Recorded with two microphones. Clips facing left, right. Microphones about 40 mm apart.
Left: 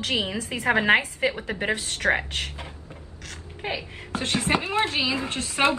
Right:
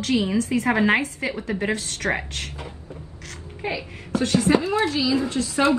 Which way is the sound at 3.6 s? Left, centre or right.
Left.